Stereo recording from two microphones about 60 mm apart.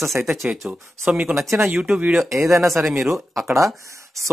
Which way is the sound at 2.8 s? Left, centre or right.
Centre.